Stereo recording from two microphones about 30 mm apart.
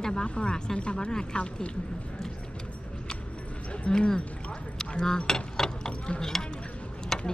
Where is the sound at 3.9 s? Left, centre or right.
Left.